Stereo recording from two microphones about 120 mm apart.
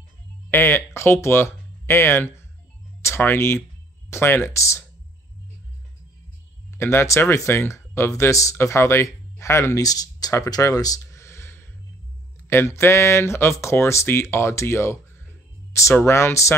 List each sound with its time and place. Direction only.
0.5 s speech: 20° left (ahead or behind)
6.7 s speech: 20° left (ahead or behind)